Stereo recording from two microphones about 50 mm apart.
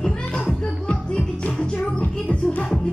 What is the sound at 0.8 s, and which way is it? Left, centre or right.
Music, left.